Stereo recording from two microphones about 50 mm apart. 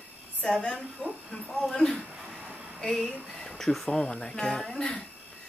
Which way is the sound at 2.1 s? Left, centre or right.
Centre.